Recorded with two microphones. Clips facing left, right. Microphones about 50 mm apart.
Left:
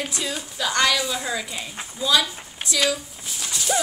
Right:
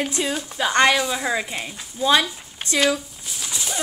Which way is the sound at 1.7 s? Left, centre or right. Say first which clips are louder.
Left 2 dB; left.